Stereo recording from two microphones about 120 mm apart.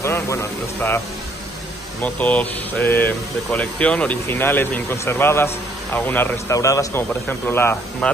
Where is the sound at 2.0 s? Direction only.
15° left (ahead or behind).